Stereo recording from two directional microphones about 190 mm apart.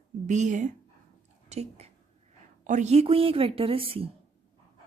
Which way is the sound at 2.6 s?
40° right (ahead or behind).